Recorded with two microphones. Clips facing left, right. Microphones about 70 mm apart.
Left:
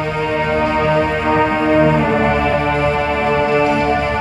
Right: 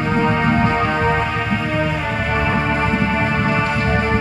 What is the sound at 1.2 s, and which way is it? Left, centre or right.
Music, centre.